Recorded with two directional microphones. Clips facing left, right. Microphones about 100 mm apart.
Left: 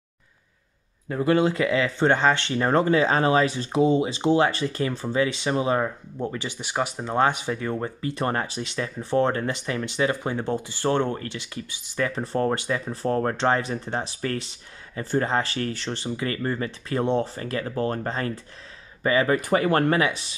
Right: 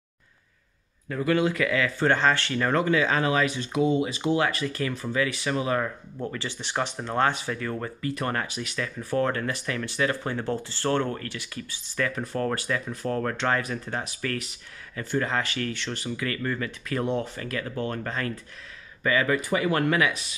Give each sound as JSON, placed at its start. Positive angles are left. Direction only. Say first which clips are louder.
{"t": 1.0, "sound": "speech", "louder": "left 3 dB", "side_deg": 25}
{"t": 12.9, "sound": "speech", "louder": "left 4 dB", "side_deg": 30}
{"t": 19.3, "sound": "speech", "louder": "left 4 dB", "side_deg": 45}
{"t": 20.0, "sound": "speech", "louder": "left 1 dB", "side_deg": 30}